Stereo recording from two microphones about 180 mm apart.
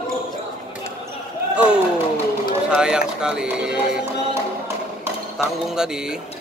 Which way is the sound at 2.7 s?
5° right (ahead or behind).